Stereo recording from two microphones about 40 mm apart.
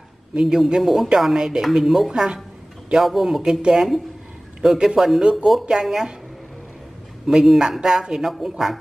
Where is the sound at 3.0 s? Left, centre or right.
Centre.